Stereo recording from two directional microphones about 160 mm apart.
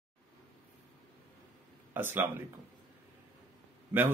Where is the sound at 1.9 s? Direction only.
15° right (ahead or behind).